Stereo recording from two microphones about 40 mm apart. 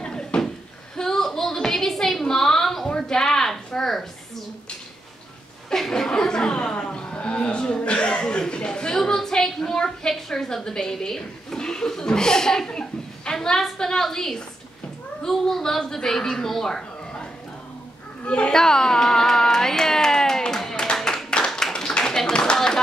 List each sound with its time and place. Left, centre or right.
0.0 s a sound: centre
5.7 s speech: centre
8.9 s a woman's voice: centre
18.2 s a child's voice: left
18.5 s music: centre
20.8 s clapping: centre
21.7 s tap: centre